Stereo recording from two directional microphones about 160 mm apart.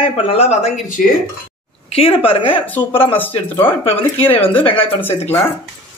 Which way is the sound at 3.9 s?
35° left (ahead or behind).